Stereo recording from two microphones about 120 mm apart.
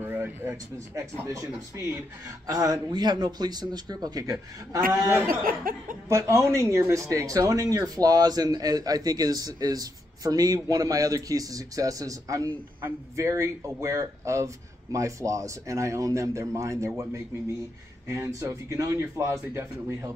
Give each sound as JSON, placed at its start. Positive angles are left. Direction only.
{"t": 0.0, "sound": "speech", "side_deg": -15}